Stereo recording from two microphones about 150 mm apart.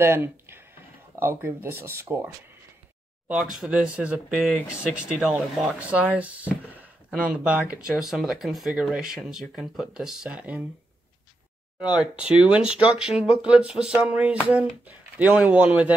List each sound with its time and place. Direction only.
0.0 s speech: 15° right (ahead or behind)
3.5 s speech: 5° right (ahead or behind)
11.8 s speech: 5° right (ahead or behind)